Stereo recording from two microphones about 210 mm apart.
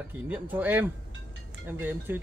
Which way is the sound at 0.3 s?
10° right (ahead or behind).